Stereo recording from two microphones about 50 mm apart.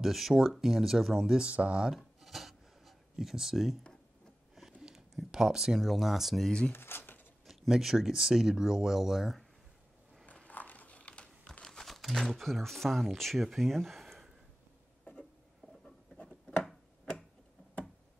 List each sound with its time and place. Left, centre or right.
0.0 s speech: centre
1.4 s speech: right
2.0 s filing: centre
4.8 s a sound: centre
5.8 s speech: centre
6.7 s a sound: left
7.4 s speech: centre
10.4 s a sound: left
11.6 s speech: centre